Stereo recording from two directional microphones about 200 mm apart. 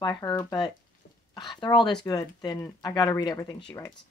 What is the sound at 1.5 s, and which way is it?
A woman's voice, 20° left (ahead or behind).